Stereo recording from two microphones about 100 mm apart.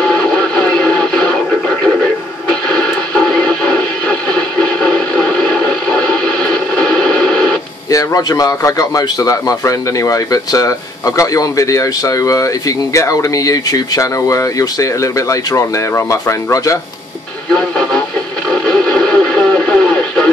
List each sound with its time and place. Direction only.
0.0 s music: 10° left (ahead or behind)
2.7 s a sound: 5° left (ahead or behind)
7.9 s a man's voice: 35° left (ahead or behind)
17.6 s speech: 10° left (ahead or behind)
18.5 s radio: 5° left (ahead or behind)